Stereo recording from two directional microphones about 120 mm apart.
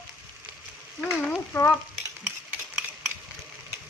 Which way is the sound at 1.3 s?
20° left (ahead or behind).